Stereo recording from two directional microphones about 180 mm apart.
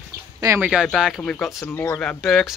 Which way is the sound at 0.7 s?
5° right (ahead or behind).